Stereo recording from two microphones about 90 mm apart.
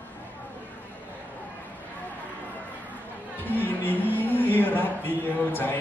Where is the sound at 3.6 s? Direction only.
20° left (ahead or behind).